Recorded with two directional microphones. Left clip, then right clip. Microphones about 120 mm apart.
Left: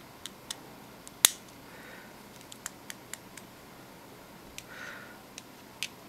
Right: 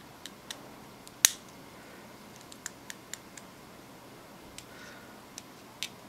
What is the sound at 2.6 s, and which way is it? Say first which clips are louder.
Computer keyboard: even; 5° left (ahead or behind).